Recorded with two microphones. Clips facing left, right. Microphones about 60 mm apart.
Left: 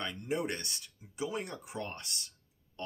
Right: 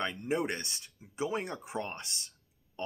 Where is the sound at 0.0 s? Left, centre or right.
Right.